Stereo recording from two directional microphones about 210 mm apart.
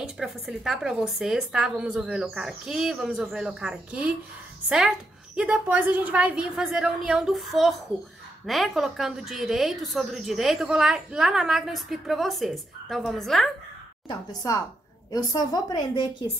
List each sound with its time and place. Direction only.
0.0 s a woman's voice: 5° right (ahead or behind)
14.0 s a woman's voice: 15° left (ahead or behind)